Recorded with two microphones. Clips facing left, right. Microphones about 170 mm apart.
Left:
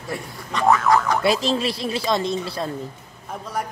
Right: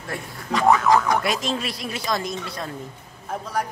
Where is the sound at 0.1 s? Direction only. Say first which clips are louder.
Right 2 dB; 5° right (ahead or behind).